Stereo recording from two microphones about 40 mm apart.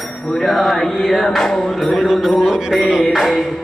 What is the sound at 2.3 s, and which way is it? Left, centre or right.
Mantra, centre.